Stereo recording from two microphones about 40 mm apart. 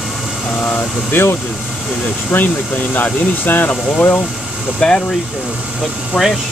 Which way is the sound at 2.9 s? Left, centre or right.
Left.